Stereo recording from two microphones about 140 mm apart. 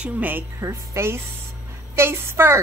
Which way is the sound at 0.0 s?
15° right (ahead or behind).